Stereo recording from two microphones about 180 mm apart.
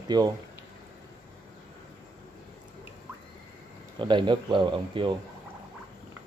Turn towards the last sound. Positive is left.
turn(degrees=-30)  # may be behind; listen again after turning